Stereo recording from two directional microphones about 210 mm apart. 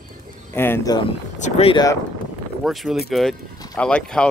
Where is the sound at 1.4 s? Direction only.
25° left (ahead or behind).